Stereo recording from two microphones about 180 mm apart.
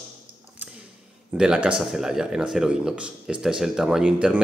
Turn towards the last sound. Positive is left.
turn(degrees=-5)  # may be behind; listen again after turning